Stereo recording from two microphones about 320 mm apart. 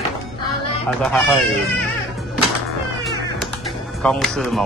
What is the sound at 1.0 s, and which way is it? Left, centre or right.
Speech, centre.